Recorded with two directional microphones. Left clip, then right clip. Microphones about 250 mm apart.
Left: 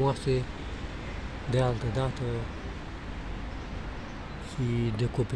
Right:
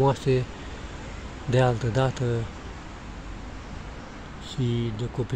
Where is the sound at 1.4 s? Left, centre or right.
Centre.